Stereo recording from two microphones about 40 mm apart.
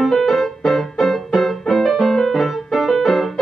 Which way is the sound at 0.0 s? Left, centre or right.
Centre.